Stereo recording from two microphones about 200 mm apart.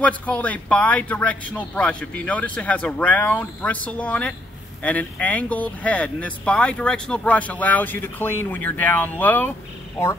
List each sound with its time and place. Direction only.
0.0 s speech: 5° left (ahead or behind)